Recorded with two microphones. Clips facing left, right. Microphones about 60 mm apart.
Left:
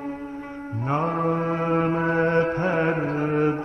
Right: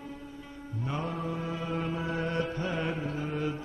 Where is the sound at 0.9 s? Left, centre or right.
Left.